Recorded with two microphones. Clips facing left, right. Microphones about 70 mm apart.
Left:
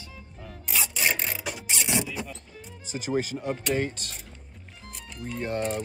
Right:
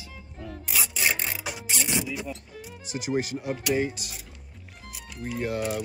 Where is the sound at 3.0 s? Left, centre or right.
Centre.